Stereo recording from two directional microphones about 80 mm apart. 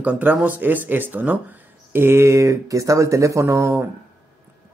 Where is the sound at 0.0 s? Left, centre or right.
Right.